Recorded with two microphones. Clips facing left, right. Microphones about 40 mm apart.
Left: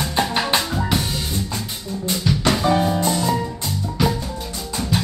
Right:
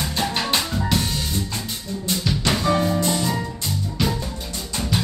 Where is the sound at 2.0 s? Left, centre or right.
Centre.